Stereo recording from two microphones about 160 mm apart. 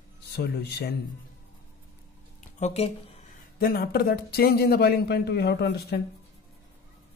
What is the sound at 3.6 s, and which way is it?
A man's voice, 75° left (ahead or behind).